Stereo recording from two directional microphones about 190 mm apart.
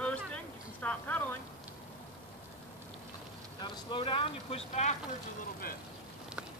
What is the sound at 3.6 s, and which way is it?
Speech, 25° left (ahead or behind).